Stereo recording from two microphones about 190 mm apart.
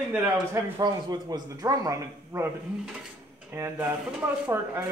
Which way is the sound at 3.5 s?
10° right (ahead or behind).